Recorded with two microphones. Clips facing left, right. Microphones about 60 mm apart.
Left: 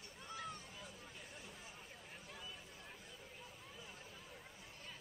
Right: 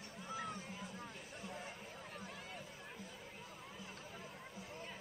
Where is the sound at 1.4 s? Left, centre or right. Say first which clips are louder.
Right 8 dB; right.